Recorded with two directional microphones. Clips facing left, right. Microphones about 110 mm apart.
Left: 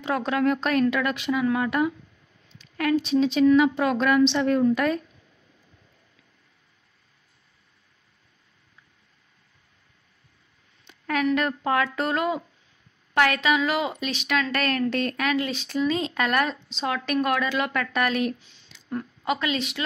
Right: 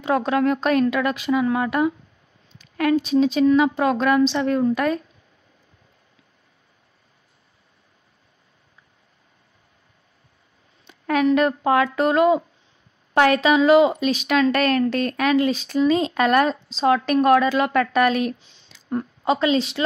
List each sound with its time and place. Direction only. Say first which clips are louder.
0.0 s a woman's voice: right 4 dB; 35° right (ahead or behind)
3.0 s a woman's voice: even; 40° right (ahead or behind)
11.1 s a woman's voice: right 6 dB; 30° right (ahead or behind)